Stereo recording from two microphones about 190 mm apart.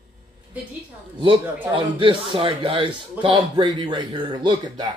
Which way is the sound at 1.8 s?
25° right (ahead or behind).